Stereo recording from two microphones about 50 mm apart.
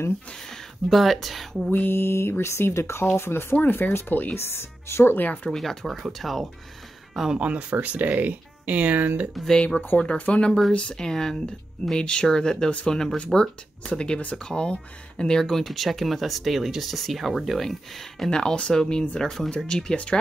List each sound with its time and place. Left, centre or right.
0.5 s speech: centre
1.9 s speech: left
3.5 s speech: left
4.4 s speech: left
5.1 s speech: left
5.5 s speech: centre
7.3 s speech: right
9.9 s speech: left
11.0 s speech: centre
18.3 s speech: centre